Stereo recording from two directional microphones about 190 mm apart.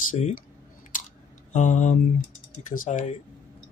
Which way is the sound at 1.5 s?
40° left (ahead or behind).